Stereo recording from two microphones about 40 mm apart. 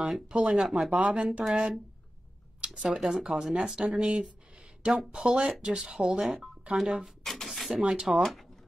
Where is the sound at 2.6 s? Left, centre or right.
Right.